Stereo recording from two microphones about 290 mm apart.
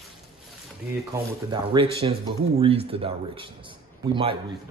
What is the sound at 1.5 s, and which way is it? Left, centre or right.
A man's voice, centre.